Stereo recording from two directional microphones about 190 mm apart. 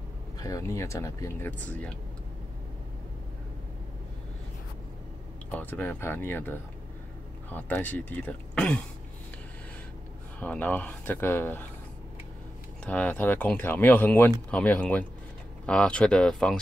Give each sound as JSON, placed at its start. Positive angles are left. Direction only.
{"t": 0.4, "sound": "speech", "side_deg": 15}
{"t": 5.5, "sound": "speech", "side_deg": 10}
{"t": 10.4, "sound": "speech", "side_deg": 10}
{"t": 12.8, "sound": "speech", "side_deg": 5}